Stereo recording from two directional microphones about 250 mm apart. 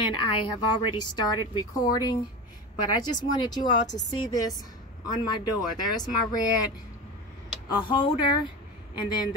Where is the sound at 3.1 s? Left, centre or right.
Centre.